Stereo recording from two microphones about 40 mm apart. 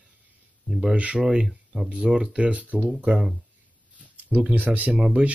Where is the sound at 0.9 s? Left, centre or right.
Right.